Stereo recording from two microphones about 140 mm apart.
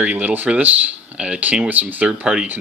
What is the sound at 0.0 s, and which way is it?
Speech, 10° right (ahead or behind).